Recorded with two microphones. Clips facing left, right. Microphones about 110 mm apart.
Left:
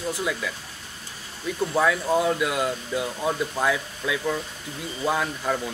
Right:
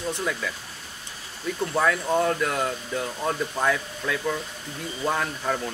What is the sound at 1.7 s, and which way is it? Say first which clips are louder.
A man's voice: left 1 dB; 5° left (ahead or behind).